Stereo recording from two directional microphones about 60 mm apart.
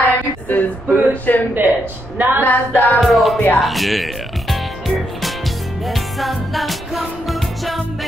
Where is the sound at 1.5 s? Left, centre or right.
Right.